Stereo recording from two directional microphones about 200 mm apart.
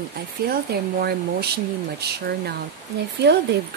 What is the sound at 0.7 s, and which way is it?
Speech, 50° right (ahead or behind).